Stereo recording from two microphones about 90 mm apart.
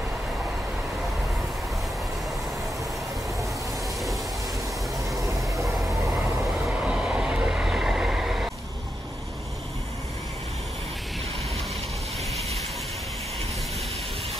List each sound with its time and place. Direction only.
6.7 s vehicle: 15° right (ahead or behind)